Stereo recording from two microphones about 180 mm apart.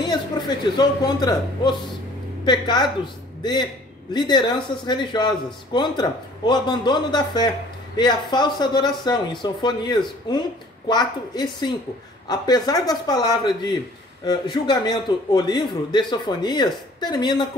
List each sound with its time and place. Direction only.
0.7 s speech: 25° left (ahead or behind)